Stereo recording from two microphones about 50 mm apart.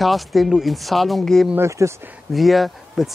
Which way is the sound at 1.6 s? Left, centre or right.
Right.